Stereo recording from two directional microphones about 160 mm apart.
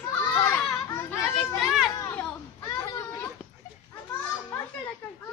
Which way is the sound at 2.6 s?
20° left (ahead or behind).